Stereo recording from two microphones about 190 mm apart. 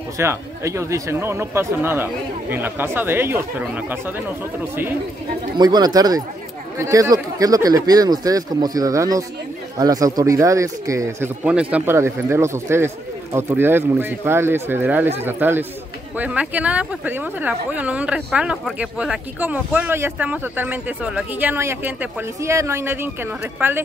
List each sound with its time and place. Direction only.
0.2 s speech: 15° right (ahead or behind)
5.6 s speech: 20° right (ahead or behind)